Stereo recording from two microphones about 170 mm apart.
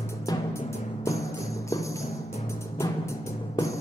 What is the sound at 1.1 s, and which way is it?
Music, 20° left (ahead or behind).